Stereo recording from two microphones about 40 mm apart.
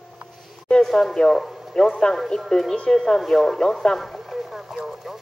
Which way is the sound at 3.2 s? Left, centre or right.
Centre.